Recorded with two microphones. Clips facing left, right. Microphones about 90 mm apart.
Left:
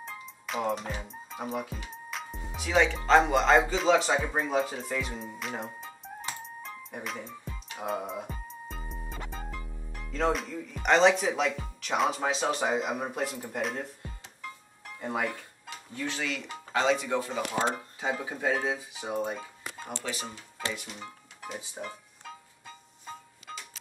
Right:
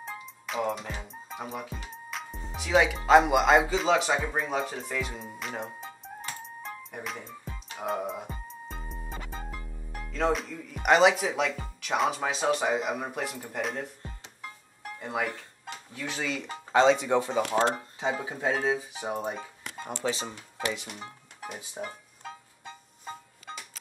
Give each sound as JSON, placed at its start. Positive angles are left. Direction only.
{"t": 0.0, "sound": "music", "side_deg": 0}
{"t": 1.0, "sound": "speech", "side_deg": 0}
{"t": 6.8, "sound": "music", "side_deg": 0}
{"t": 10.1, "sound": "speech", "side_deg": 0}
{"t": 15.0, "sound": "speech", "side_deg": 5}
{"t": 16.1, "sound": "speech", "side_deg": -25}